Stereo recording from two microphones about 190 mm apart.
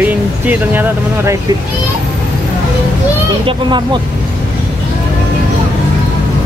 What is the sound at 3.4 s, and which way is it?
Speech, 25° right (ahead or behind).